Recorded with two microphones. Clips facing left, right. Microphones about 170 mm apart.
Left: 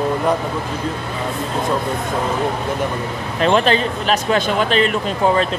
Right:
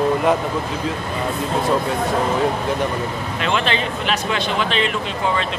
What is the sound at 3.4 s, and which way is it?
Speech, 40° left (ahead or behind).